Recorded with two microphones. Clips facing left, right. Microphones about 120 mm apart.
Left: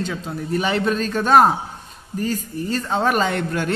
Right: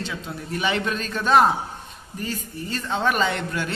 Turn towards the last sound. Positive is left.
turn(degrees=45)  # may be behind; listen again after turning